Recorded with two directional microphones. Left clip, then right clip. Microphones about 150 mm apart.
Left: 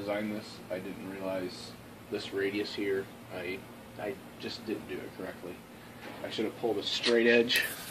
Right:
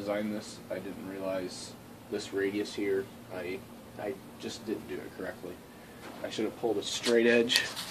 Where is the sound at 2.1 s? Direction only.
20° right (ahead or behind).